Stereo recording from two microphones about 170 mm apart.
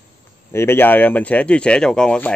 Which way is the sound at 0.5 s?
15° left (ahead or behind).